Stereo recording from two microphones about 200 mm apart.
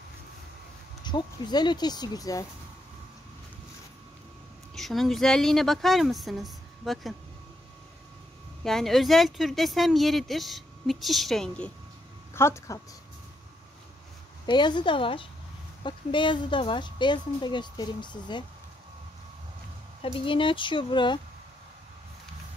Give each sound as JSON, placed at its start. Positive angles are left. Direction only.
{"t": 1.0, "sound": "speech", "side_deg": 20}
{"t": 4.7, "sound": "speech", "side_deg": 0}
{"t": 8.6, "sound": "speech", "side_deg": 0}
{"t": 14.4, "sound": "speech", "side_deg": 20}
{"t": 20.0, "sound": "speech", "side_deg": 25}